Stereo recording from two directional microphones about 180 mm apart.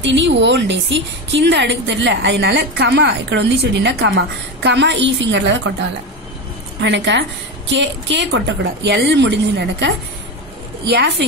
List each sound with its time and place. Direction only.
0.0 s a woman's voice: 85° right; by 11.2 s 65° right (ahead or behind)